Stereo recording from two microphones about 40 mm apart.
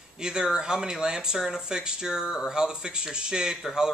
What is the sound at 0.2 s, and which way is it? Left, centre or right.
A man's voice, centre.